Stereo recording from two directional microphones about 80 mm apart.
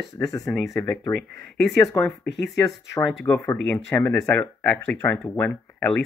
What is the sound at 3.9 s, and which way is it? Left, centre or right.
Speech, left.